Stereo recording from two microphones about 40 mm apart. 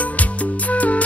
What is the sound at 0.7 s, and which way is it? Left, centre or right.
Music, left.